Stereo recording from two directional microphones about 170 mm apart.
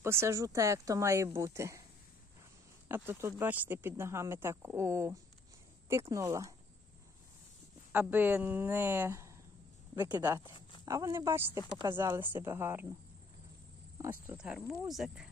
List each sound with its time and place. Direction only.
0.0 s speech: 15° right (ahead or behind)
2.9 s speech: 15° right (ahead or behind)
7.9 s speech: 10° right (ahead or behind)
14.3 s speech: 5° right (ahead or behind)